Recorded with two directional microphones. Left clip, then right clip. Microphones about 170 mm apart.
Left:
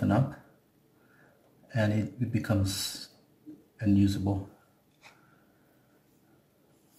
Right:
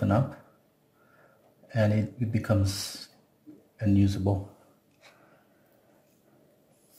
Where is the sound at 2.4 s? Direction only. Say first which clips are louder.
Right 2 dB; 35° right (ahead or behind).